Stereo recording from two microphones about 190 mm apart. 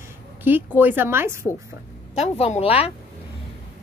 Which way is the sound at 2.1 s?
35° left (ahead or behind).